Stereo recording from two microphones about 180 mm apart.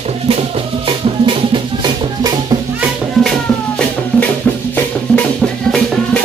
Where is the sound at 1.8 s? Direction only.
20° right (ahead or behind).